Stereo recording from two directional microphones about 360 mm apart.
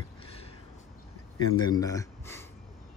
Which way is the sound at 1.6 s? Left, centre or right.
Centre.